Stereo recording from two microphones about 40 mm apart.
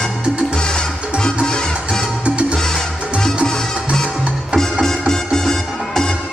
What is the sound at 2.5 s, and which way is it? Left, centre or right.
Music, centre.